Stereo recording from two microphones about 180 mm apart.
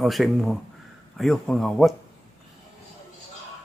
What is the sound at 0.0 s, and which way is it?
Speech, centre (ahead or behind).